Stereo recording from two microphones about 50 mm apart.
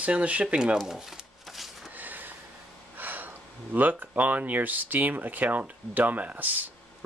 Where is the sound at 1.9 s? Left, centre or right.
Right.